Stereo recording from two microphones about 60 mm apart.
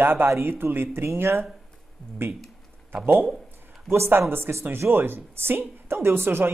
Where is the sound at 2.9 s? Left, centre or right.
Right.